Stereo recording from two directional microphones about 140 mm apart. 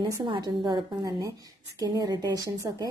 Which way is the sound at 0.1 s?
25° right (ahead or behind).